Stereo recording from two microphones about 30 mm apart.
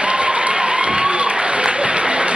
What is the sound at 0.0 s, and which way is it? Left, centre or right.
Applause, right.